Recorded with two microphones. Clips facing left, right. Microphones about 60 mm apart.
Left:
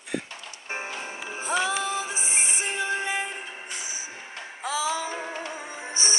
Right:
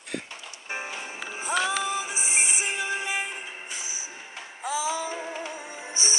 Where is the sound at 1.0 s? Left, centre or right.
Left.